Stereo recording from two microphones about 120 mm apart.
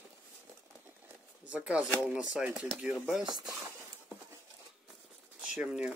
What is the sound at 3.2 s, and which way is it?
Speech, 35° right (ahead or behind).